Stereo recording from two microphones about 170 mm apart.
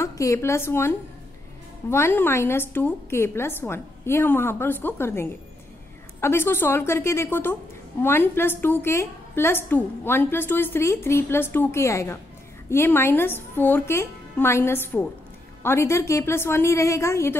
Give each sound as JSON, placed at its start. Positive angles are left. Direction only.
{"t": 0.0, "sound": "a woman's voice", "side_deg": 15}